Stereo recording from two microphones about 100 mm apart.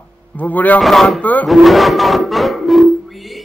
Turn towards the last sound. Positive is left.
turn(degrees=0)  # may be behind; listen again after turning